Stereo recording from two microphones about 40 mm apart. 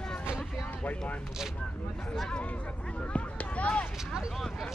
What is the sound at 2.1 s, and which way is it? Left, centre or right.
Speech, left.